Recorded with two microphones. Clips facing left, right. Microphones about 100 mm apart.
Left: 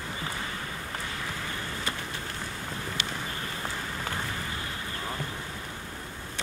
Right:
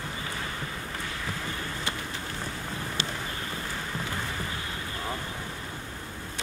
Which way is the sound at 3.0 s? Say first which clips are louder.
Right 3 dB; 30° right (ahead or behind).